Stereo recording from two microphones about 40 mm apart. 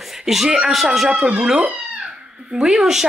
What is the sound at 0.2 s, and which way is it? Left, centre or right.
Speech, centre.